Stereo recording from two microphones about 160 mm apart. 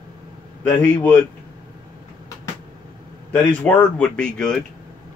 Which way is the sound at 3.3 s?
10° left (ahead or behind).